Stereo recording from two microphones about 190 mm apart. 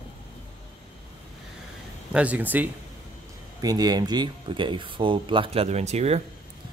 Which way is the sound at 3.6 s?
20° right (ahead or behind).